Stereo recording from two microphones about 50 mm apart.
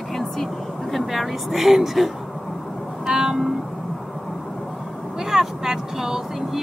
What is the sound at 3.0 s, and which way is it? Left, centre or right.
Vehicle, centre.